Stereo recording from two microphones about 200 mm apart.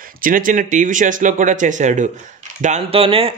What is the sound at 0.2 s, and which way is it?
Speech, 45° right (ahead or behind).